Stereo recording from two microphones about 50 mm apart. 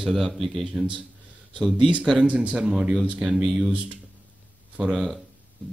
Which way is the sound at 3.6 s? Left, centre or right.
Right.